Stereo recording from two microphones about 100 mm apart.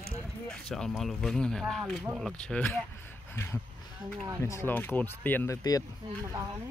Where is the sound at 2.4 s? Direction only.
15° left (ahead or behind).